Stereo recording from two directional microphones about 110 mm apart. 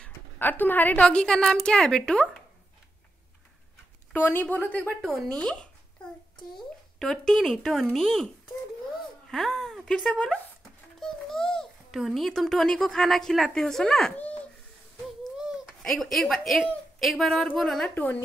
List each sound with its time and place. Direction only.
0.0 s a woman's voice: 15° left (ahead or behind)
4.1 s a woman's voice: 15° left (ahead or behind)
5.0 s a woman's voice: 5° left (ahead or behind)
7.0 s speech: 5° left (ahead or behind)
9.3 s a child's voice: 5° left (ahead or behind)
15.0 s a sound: centre (ahead or behind)
17.6 s speech: 5° left (ahead or behind)
17.9 s a woman's voice: 15° left (ahead or behind)